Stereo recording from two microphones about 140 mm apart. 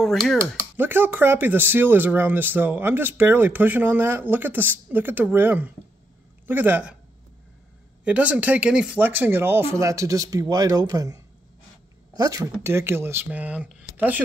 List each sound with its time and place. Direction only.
0.0 s speech: centre (ahead or behind)
0.7 s speech: 15° right (ahead or behind)
8.0 s speech: 10° right (ahead or behind)